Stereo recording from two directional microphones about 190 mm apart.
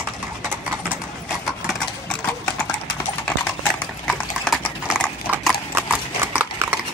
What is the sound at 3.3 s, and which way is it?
Typing, 5° left (ahead or behind).